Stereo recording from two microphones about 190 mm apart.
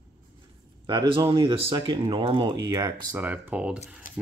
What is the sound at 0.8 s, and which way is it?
Speech, 25° right (ahead or behind).